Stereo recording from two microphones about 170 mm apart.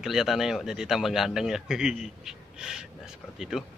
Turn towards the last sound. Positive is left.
turn(degrees=0)  # may be behind; listen again after turning